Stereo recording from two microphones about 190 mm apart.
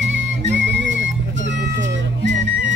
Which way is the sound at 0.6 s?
70° right (ahead or behind).